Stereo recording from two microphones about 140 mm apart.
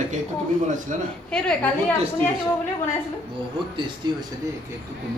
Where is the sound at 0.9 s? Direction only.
60° right (ahead or behind).